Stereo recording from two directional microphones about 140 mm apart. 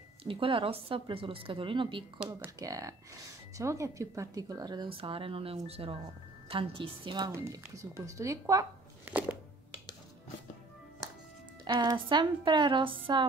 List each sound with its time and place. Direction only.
0.2 s speech: 40° right (ahead or behind)
2.2 s speech: 20° right (ahead or behind); by 7.2 s 40° right (ahead or behind)
7.2 s speech: 25° right (ahead or behind)
11.6 s speech: 30° right (ahead or behind)